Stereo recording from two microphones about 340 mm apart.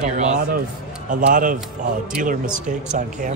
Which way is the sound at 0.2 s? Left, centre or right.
Right.